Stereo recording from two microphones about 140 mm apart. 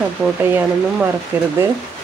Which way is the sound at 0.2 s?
15° right (ahead or behind).